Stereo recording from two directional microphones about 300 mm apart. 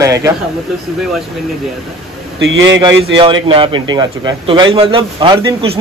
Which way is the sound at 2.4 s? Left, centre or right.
Right.